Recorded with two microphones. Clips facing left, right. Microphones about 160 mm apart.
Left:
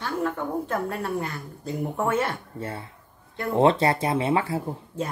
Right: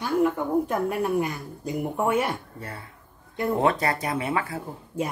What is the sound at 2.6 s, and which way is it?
Speech, 25° left (ahead or behind).